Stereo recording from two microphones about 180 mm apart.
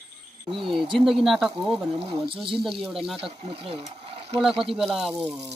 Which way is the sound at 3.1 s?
30° right (ahead or behind).